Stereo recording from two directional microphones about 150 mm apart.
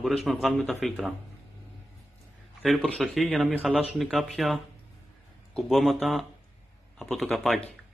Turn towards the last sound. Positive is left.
turn(degrees=0)  # may be behind; listen again after turning